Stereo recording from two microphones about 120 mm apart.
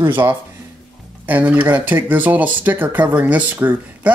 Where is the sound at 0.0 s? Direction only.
20° right (ahead or behind).